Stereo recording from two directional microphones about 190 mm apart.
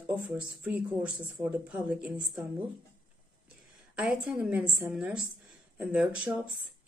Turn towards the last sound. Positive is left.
turn(degrees=-5)  # may be behind; listen again after turning